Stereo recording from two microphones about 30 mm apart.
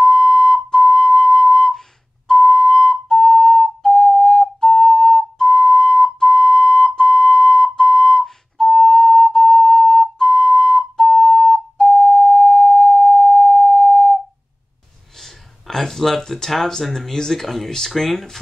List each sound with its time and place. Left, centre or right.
0.0 s music: centre
2.3 s whistle: centre
6.1 s a sound: centre
10.1 s whistle: centre
15.2 s a sound: centre
16.9 s speech: centre